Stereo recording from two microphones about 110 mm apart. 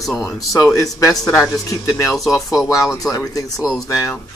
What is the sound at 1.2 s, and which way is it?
Speech, 5° left (ahead or behind).